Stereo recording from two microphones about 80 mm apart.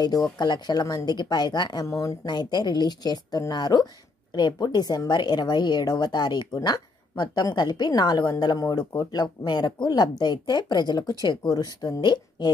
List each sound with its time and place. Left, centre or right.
0.0 s a woman's voice: left
1.9 s speech: left
2.2 s a woman's voice: left